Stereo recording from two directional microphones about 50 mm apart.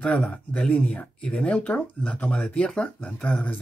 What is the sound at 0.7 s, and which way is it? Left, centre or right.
Speech, left.